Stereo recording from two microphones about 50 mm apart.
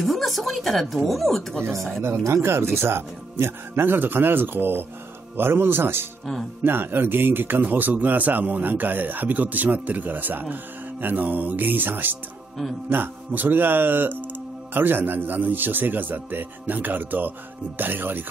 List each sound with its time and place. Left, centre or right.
0.0 s speech: centre
2.2 s a man's voice: right